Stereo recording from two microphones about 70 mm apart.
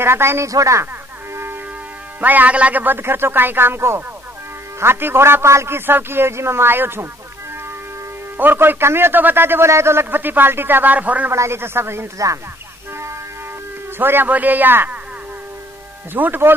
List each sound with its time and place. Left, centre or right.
0.0 s a man's voice: right
0.5 s speech: right
1.3 s music: right
2.1 s a man's voice: right
8.4 s a man's voice: right
11.3 s a man's voice: right
13.9 s speech: right
16.1 s a man's voice: right